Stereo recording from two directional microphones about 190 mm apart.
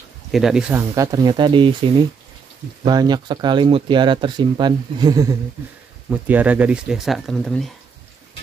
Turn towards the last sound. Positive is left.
turn(degrees=0)  # may be behind; listen again after turning